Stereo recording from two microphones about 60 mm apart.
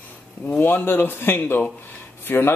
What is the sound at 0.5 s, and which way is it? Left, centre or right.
Speech, left.